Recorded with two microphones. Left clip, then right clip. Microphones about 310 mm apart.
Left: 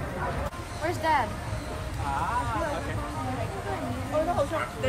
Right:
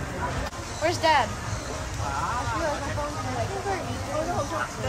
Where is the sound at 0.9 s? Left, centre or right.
Right.